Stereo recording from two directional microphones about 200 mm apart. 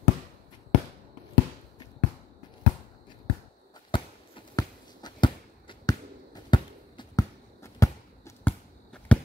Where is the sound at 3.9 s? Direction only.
20° left (ahead or behind).